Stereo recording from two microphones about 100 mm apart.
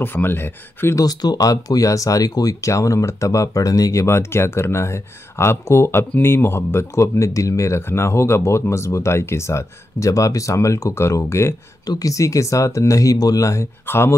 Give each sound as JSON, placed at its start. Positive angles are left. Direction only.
{"t": 0.0, "sound": "speech", "side_deg": 20}
{"t": 0.9, "sound": "speech", "side_deg": 40}
{"t": 11.8, "sound": "speech", "side_deg": 40}